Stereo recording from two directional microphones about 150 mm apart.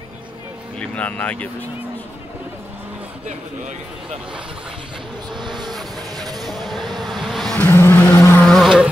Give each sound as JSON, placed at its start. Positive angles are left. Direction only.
{"t": 0.7, "sound": "speech", "side_deg": 10}
{"t": 3.3, "sound": "speech", "side_deg": -55}
{"t": 5.3, "sound": "vehicle", "side_deg": -30}
{"t": 5.9, "sound": "music", "side_deg": -25}
{"t": 6.4, "sound": "a sound", "side_deg": 0}
{"t": 7.5, "sound": "vehicle", "side_deg": 15}
{"t": 8.5, "sound": "vehicle", "side_deg": 0}